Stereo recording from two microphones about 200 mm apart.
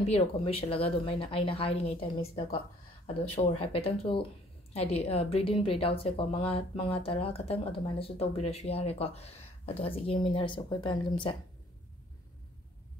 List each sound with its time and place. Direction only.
0.0 s a woman's voice: 30° left (ahead or behind)